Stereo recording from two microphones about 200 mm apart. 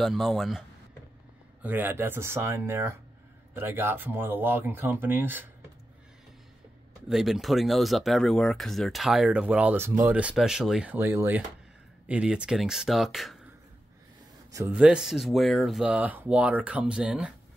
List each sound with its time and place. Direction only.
0.0 s speech: centre (ahead or behind)
7.1 s speech: centre (ahead or behind)
14.5 s a man's voice: 15° right (ahead or behind)
14.8 s speech: 5° right (ahead or behind)